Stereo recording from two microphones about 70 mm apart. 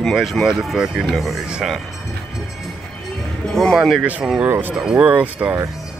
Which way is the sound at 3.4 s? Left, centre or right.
Centre.